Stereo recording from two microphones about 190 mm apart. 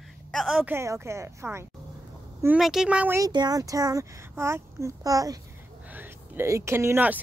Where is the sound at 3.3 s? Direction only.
20° right (ahead or behind).